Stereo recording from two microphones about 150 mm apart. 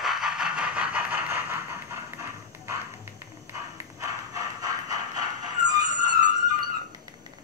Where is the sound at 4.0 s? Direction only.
25° right (ahead or behind).